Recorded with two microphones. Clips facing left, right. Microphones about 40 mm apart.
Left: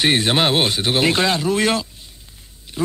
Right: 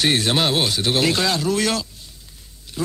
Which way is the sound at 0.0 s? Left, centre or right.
Left.